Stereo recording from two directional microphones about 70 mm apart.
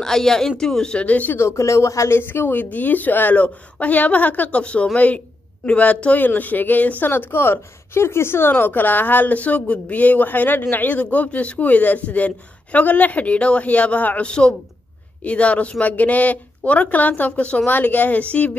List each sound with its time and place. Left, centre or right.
0.0 s speech: centre
1.0 s speech: left
1.4 s speech: left; by 18.6 s centre